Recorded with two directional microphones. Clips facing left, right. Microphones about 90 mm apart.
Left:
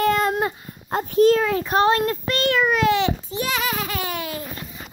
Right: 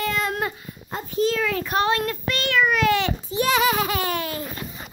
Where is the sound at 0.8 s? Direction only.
55° left (ahead or behind).